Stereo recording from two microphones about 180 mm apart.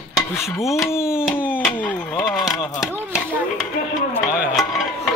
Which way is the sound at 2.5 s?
20° left (ahead or behind).